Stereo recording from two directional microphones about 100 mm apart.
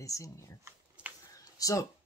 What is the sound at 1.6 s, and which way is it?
Speech, 35° left (ahead or behind).